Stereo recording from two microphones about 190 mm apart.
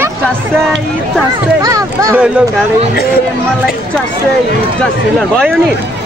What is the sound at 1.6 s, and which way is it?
Speech, 15° right (ahead or behind).